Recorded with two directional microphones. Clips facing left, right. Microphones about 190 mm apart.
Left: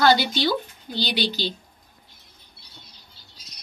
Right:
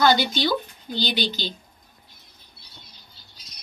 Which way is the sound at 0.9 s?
45° right (ahead or behind).